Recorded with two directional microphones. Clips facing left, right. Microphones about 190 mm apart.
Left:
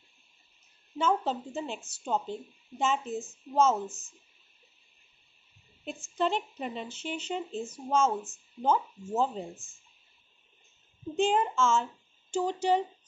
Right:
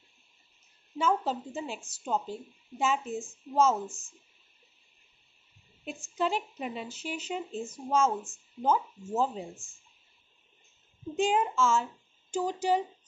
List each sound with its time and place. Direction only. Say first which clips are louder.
0.9 s speech: even; 5° right (ahead or behind)
6.1 s speech: left 1 dB; 5° right (ahead or behind)
11.2 s speech: even; 5° right (ahead or behind)